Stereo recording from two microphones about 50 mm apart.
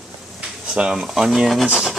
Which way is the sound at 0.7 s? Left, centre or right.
Right.